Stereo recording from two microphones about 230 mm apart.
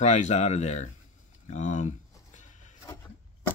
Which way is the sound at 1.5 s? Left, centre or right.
Left.